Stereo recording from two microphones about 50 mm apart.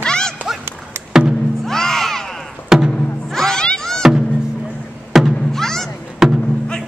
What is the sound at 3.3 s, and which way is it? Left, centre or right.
Music, centre.